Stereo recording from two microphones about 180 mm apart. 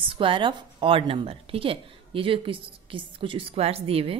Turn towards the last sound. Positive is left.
turn(degrees=-30)  # may be behind; listen again after turning